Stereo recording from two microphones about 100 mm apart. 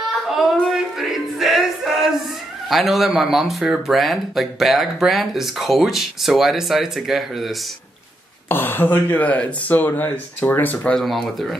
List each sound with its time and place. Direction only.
0.3 s music: 5° right (ahead or behind)
2.7 s speech: centre (ahead or behind)
8.5 s speech: 20° left (ahead or behind)
11.0 s speech: centre (ahead or behind)